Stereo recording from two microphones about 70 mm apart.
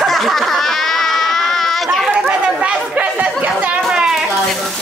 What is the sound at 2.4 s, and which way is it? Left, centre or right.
Chatter, centre.